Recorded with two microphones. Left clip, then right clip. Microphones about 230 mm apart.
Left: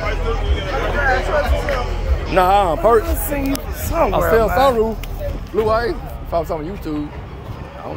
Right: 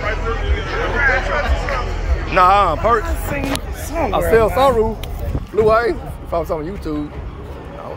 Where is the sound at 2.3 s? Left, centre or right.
Centre.